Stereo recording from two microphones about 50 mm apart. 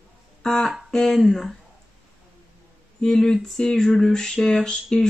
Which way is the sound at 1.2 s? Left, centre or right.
Centre.